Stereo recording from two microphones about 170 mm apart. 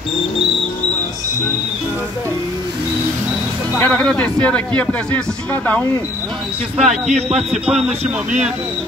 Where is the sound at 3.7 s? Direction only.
5° left (ahead or behind).